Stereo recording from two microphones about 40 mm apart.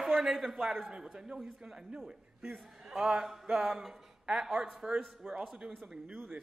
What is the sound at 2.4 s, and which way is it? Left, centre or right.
Speech, centre.